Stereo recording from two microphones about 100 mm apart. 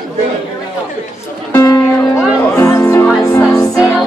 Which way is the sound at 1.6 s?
30° left (ahead or behind).